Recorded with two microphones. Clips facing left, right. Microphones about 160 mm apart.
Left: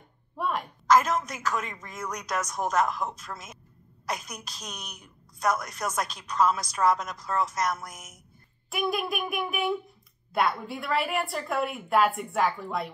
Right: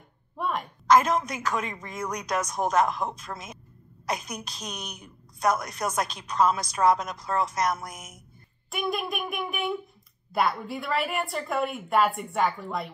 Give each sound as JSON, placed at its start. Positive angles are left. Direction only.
{"t": 0.4, "sound": "a woman's voice", "side_deg": 0}